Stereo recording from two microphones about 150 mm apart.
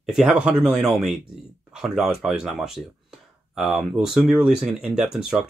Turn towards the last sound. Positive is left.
turn(degrees=-5)  # may be behind; listen again after turning